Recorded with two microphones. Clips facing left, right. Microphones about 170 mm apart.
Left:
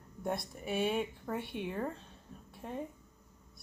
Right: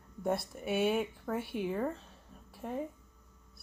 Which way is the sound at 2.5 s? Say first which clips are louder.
Right 3 dB; centre (ahead or behind).